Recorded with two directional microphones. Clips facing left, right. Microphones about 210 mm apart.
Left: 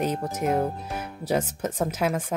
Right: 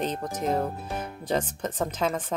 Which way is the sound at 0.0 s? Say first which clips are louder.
Left 3 dB; 10° left (ahead or behind).